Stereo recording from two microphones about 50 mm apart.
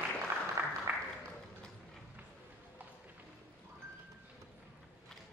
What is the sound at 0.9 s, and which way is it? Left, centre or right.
Applause, right.